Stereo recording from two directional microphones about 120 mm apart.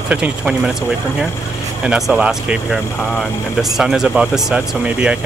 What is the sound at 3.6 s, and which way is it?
Speech, centre (ahead or behind).